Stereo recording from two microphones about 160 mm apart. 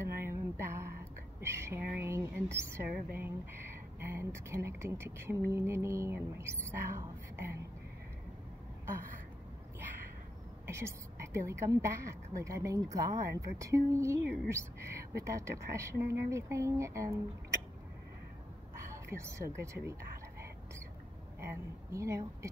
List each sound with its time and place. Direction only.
0.2 s a sound: 15° right (ahead or behind)
1.4 s speech: 15° right (ahead or behind)
10.7 s a woman's voice: 15° right (ahead or behind)
19.0 s speech: 15° right (ahead or behind)
21.4 s speech: 15° right (ahead or behind)